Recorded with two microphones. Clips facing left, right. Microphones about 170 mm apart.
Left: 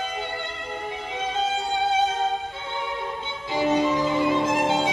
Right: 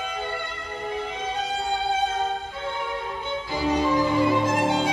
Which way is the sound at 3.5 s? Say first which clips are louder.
Left 2 dB; 20° left (ahead or behind).